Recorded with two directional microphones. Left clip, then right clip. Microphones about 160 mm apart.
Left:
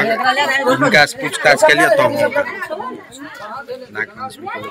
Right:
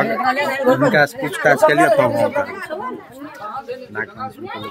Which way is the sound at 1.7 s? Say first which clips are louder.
Left 2 dB; 50° right (ahead or behind).